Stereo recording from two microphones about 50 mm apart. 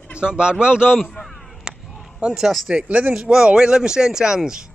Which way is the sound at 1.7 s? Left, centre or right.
Centre.